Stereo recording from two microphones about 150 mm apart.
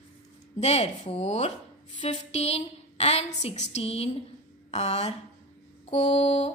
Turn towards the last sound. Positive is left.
turn(degrees=45)  # may be behind; listen again after turning